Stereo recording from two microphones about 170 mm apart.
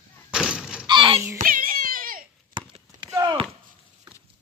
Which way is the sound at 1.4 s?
55° right (ahead or behind).